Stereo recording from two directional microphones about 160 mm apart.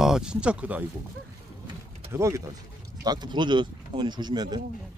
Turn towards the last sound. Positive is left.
turn(degrees=-25)  # may be behind; listen again after turning